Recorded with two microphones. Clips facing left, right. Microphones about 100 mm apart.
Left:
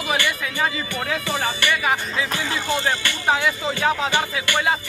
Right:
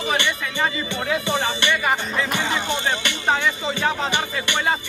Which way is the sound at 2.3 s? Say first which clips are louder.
Right 1 dB; 20° right (ahead or behind).